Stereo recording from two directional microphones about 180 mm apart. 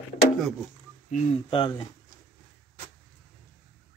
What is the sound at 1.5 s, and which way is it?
Speech, 25° left (ahead or behind).